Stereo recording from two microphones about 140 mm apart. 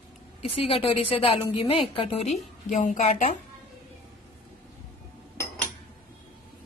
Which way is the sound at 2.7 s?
60° left (ahead or behind).